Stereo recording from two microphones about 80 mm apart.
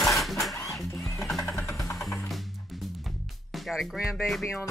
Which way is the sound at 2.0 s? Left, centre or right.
Centre.